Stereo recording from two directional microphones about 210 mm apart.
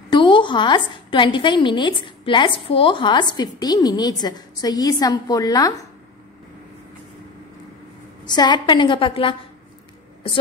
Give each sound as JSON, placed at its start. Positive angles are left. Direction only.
{"t": 0.1, "sound": "a woman's voice", "side_deg": 20}
{"t": 8.3, "sound": "a woman's voice", "side_deg": 20}